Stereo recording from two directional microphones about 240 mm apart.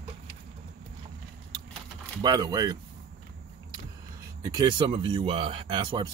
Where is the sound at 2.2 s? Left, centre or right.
Centre.